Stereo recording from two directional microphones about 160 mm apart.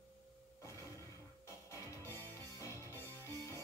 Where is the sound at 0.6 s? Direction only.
20° left (ahead or behind).